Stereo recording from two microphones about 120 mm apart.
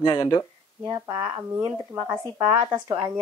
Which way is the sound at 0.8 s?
35° right (ahead or behind).